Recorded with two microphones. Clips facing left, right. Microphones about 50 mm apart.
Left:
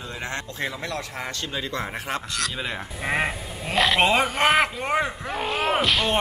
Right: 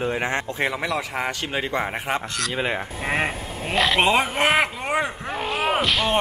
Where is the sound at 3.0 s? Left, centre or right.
Centre.